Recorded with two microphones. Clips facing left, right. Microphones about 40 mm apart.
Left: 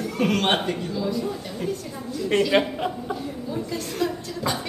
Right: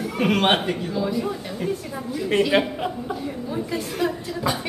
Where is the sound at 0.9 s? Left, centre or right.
Right.